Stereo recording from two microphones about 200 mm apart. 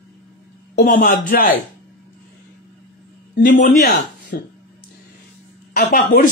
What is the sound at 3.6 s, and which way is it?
Speech, 50° left (ahead or behind).